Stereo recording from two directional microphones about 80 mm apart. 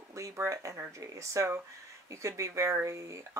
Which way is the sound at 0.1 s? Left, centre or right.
Right.